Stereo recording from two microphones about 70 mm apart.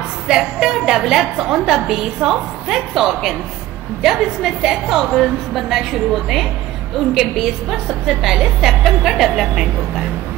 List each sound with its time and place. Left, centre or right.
0.3 s a woman's voice: centre